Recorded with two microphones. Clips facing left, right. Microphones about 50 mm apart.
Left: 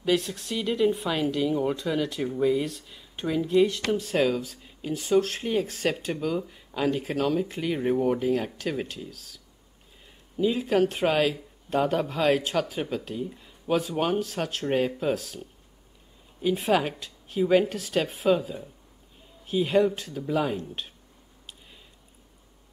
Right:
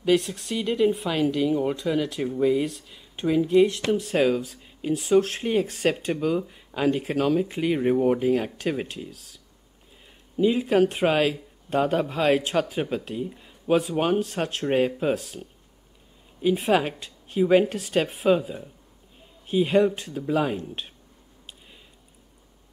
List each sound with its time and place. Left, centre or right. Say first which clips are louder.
0.0 s speech: right 3 dB; centre
10.3 s speech: right 3 dB; centre